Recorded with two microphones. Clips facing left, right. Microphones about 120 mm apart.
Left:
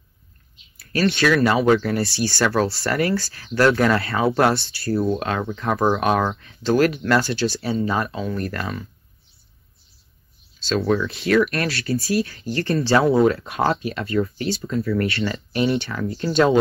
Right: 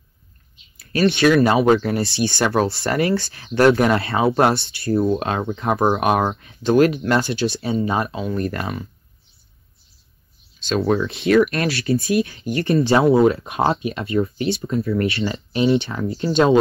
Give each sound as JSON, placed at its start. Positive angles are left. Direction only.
{"t": 0.7, "sound": "speech", "side_deg": -20}
{"t": 10.6, "sound": "speech", "side_deg": -25}